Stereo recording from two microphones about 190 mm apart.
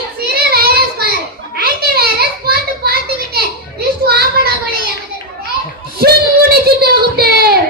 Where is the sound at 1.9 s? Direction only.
55° right (ahead or behind).